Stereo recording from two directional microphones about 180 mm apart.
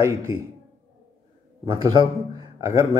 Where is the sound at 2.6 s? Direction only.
15° right (ahead or behind).